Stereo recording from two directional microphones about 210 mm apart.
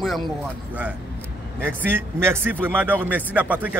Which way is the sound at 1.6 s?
10° right (ahead or behind).